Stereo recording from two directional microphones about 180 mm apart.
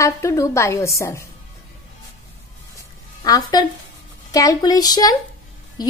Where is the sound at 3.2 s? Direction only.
20° left (ahead or behind).